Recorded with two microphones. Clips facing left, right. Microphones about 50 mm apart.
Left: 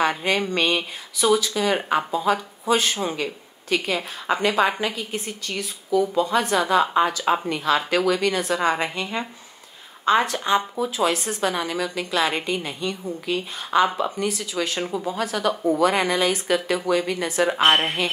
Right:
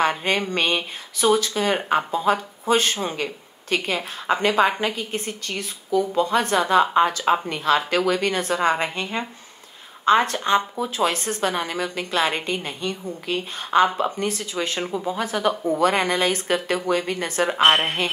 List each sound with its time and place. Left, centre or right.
0.0 s a woman's voice: right
15.0 s speech: right
15.8 s speech: right